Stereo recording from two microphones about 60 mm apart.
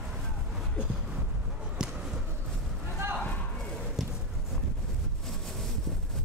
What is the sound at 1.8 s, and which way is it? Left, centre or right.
Basketball bounce, centre.